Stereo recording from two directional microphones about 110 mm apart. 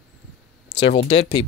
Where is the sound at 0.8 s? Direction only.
60° left (ahead or behind).